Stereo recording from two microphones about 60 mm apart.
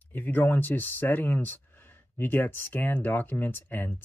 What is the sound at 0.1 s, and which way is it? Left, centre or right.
Speech, left.